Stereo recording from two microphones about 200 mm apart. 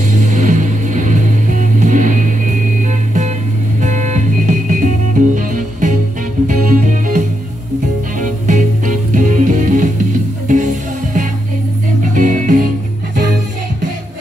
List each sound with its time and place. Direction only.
0.0 s music: 40° right (ahead or behind)
12.1 s music: 40° right (ahead or behind)